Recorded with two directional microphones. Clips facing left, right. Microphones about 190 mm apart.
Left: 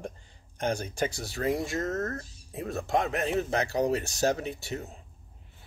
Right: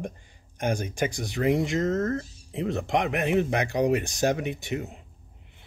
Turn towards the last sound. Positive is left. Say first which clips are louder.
# right 4 dB
turn(degrees=-15)  # may be behind; listen again after turning